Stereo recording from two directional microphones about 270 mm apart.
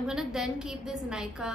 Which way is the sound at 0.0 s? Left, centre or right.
Centre.